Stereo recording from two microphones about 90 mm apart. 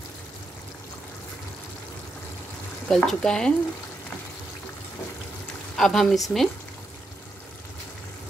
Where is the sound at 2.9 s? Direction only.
5° left (ahead or behind).